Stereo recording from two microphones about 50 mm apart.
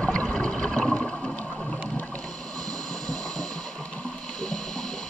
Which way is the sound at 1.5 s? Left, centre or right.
Centre.